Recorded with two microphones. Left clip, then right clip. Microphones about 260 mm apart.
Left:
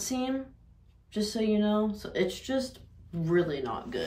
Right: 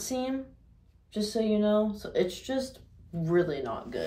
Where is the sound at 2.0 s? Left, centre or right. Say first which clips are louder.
Right 1 dB; centre.